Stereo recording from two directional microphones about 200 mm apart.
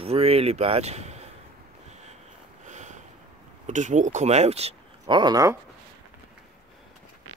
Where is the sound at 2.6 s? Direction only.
35° right (ahead or behind).